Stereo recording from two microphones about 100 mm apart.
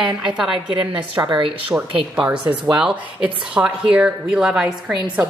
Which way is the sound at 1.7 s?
15° right (ahead or behind).